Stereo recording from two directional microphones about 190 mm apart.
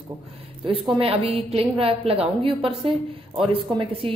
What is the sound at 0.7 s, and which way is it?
Speech, 30° right (ahead or behind).